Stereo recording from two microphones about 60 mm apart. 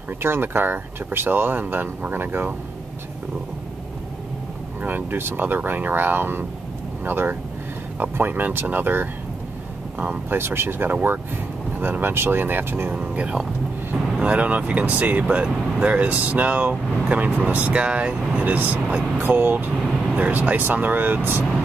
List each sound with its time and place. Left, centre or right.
0.2 s speech: right
4.8 s speech: right
10.3 s speech: right
12.9 s speech: right
19.1 s speech: right